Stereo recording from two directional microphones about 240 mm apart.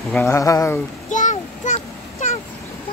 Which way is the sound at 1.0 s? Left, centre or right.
Left.